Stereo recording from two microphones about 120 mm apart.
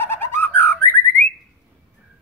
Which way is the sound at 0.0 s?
20° left (ahead or behind).